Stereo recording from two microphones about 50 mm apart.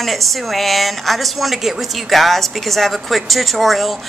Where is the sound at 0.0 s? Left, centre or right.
Centre.